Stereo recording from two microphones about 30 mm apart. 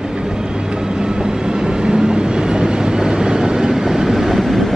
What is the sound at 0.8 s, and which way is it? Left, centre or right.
Train, right.